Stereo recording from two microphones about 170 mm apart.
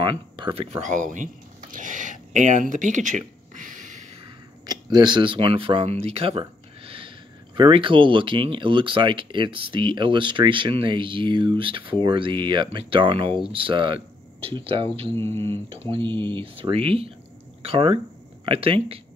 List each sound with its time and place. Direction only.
0.0 s speech: 30° right (ahead or behind)
0.7 s speech: 50° right (ahead or behind)
4.9 s speech: 25° right (ahead or behind)
15.1 s speech: 15° left (ahead or behind)
15.9 s speech: 30° right (ahead or behind)